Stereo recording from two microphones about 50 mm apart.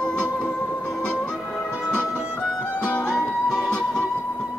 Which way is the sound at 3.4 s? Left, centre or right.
Centre.